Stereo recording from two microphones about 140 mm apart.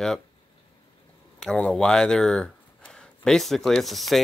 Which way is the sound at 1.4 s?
5° left (ahead or behind).